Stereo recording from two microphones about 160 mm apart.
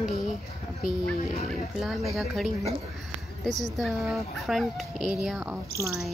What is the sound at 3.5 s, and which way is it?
Speech, centre (ahead or behind).